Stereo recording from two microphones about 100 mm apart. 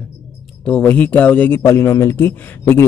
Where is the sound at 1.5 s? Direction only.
25° left (ahead or behind).